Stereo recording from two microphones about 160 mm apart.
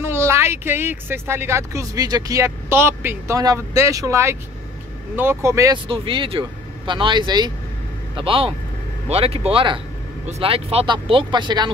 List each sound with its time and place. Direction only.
0.0 s speech: 15° right (ahead or behind)
5.9 s speech: 35° right (ahead or behind)